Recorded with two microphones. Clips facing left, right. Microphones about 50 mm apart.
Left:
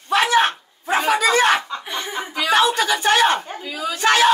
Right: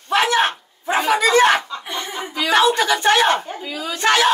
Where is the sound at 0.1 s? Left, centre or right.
Centre.